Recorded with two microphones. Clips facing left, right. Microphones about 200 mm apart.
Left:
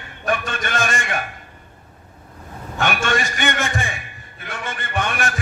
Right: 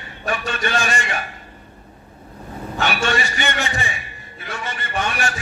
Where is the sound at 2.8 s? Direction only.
50° left (ahead or behind).